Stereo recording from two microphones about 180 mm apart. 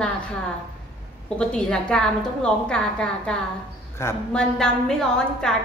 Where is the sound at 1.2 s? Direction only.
5° left (ahead or behind).